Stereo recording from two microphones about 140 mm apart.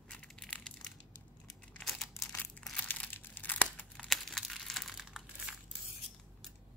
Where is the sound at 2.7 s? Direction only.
10° left (ahead or behind).